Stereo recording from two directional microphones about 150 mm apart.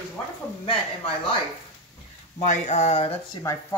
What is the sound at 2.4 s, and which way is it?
Speech, 50° left (ahead or behind).